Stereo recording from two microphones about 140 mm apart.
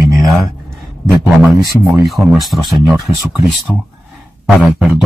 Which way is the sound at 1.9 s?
5° right (ahead or behind).